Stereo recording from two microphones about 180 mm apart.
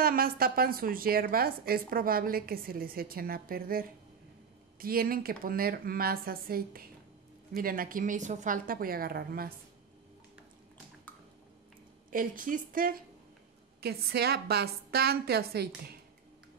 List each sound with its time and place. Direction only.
0.0 s a woman's voice: 55° right (ahead or behind)
12.1 s a woman's voice: 50° right (ahead or behind)